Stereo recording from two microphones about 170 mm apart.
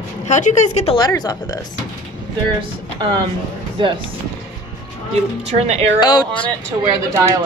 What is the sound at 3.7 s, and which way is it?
Speech, 30° right (ahead or behind).